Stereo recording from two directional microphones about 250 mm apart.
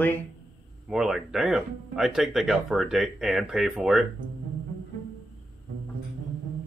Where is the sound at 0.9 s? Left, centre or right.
Centre.